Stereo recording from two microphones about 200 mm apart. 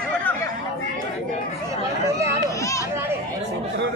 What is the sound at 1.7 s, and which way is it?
Chatter, 15° right (ahead or behind).